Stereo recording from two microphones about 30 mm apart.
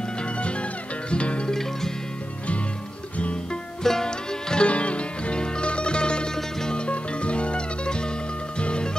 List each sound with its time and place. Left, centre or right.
0.4 s music: left
1.5 s music: centre
3.8 s music: centre
4.6 s music: left
6.3 s music: centre
6.9 s music: left